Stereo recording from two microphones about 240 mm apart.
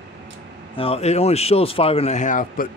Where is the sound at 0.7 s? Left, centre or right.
Left.